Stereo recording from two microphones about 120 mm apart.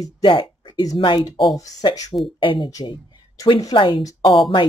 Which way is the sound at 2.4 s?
45° left (ahead or behind).